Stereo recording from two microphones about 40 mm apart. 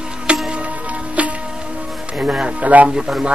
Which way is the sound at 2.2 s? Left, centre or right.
Right.